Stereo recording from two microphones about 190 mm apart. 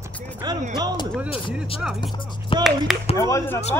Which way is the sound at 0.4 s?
20° right (ahead or behind).